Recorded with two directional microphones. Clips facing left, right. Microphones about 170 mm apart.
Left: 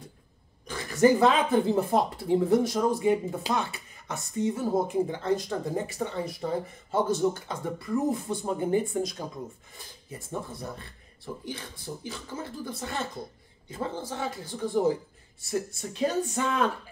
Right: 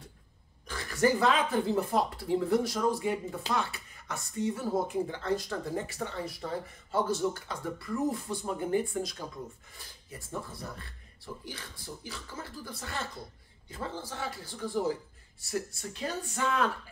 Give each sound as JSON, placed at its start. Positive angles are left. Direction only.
{"t": 0.7, "sound": "speech", "side_deg": 20}